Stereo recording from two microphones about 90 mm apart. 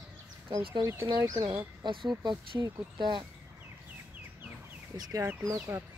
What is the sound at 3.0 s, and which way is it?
Speech, 60° right (ahead or behind).